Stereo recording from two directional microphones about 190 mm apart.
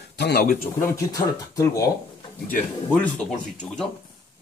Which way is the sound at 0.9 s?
15° left (ahead or behind).